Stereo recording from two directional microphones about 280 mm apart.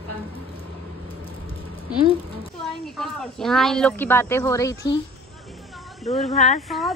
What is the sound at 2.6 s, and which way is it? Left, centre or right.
A woman's voice, centre.